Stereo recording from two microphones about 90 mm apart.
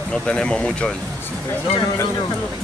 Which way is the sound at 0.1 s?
10° left (ahead or behind).